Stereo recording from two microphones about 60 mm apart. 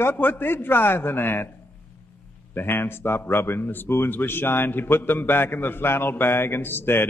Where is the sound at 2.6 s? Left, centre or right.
Left.